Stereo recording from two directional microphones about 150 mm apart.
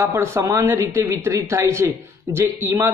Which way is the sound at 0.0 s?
20° right (ahead or behind).